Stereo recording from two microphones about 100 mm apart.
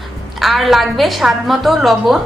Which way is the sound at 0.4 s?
Centre (ahead or behind).